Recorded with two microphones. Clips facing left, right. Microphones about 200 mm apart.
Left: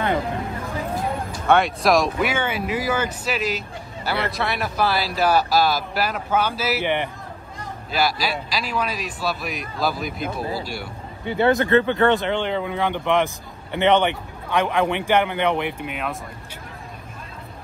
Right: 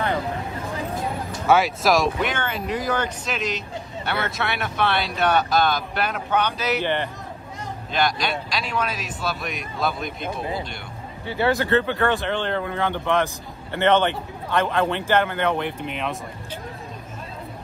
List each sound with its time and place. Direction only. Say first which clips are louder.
1.5 s speech: left 1 dB; centre (ahead or behind)
6.8 s speech: left 2 dB; 15° left (ahead or behind)
7.9 s speech: left 1 dB; 5° left (ahead or behind)
11.2 s speech: left 3 dB; 20° left (ahead or behind); by 16.2 s 5° left (ahead or behind)